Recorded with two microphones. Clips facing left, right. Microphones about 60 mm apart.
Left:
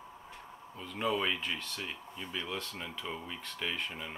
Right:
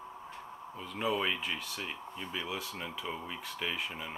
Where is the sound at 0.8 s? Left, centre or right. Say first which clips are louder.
Even; centre.